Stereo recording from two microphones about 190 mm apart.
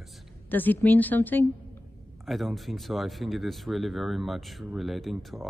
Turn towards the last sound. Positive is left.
turn(degrees=0)  # may be behind; listen again after turning